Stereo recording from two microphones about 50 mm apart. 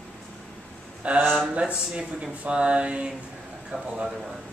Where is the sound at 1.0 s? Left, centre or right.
Right.